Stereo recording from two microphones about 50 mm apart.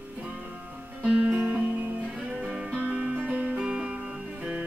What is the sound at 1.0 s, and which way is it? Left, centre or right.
Music, right.